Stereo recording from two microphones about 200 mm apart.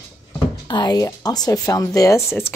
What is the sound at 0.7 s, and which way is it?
A woman's voice, 20° left (ahead or behind).